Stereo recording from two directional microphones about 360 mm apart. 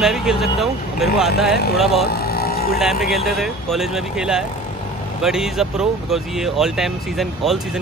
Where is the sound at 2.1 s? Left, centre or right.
Left.